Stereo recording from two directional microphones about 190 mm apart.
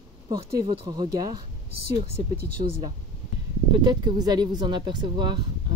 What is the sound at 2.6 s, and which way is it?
A woman's voice, 30° right (ahead or behind).